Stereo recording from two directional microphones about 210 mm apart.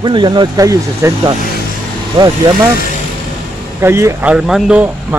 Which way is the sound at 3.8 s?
15° right (ahead or behind).